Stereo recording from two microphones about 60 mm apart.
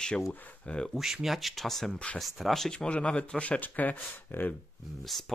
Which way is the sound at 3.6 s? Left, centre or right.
Left.